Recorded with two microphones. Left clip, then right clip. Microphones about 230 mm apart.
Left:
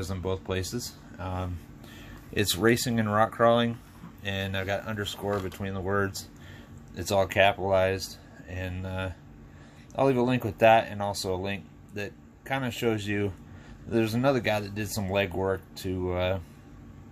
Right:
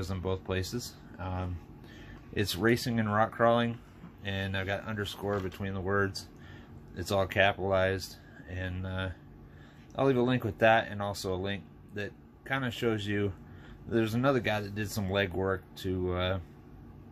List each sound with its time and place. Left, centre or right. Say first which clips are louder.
0.0 s speech: left 3 dB; centre